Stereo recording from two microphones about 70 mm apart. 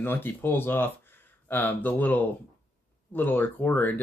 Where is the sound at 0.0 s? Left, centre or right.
Left.